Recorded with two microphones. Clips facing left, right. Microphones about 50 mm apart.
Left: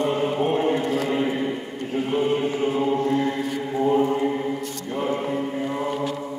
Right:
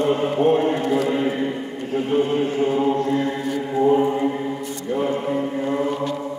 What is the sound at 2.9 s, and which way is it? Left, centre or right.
Chant, centre.